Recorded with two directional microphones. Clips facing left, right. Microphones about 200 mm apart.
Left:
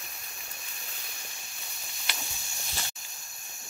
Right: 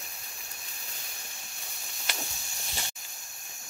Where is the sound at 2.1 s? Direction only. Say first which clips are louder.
Right 2 dB; 45° right (ahead or behind).